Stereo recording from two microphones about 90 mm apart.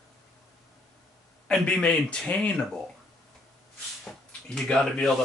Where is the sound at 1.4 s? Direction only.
10° left (ahead or behind).